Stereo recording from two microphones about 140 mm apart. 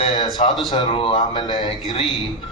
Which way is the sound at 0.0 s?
30° left (ahead or behind).